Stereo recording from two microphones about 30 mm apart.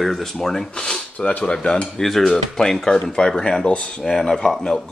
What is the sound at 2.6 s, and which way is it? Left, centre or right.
Speech, left.